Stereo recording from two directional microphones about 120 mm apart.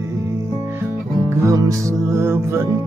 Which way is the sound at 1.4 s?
25° right (ahead or behind).